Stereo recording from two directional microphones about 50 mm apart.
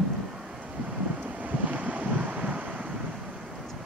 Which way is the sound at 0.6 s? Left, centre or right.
Right.